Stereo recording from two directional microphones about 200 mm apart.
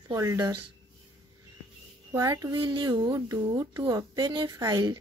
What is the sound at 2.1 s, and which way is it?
Speech, 15° right (ahead or behind).